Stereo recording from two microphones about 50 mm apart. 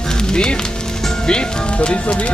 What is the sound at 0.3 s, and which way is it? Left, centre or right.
Speech, centre.